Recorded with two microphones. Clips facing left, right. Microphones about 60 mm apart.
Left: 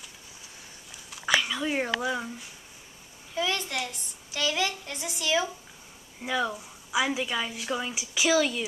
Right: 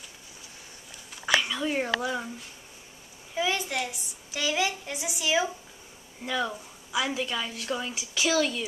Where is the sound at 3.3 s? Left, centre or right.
Centre.